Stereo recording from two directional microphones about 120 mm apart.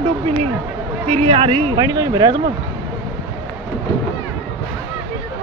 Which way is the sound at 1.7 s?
30° right (ahead or behind).